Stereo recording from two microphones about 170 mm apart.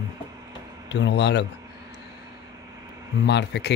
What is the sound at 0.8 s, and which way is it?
Speech, 90° left.